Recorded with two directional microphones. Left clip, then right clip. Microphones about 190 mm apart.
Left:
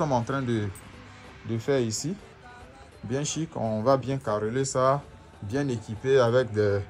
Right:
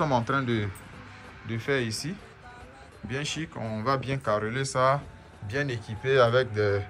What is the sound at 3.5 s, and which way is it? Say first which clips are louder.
Speech: left 6 dB; 20° left (ahead or behind).